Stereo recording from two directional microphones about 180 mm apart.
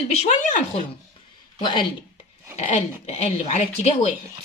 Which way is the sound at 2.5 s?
40° left (ahead or behind).